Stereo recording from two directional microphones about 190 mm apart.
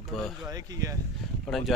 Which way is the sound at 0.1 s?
Centre (ahead or behind).